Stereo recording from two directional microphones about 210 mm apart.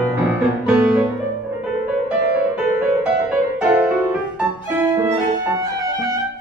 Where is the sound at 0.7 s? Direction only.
5° right (ahead or behind).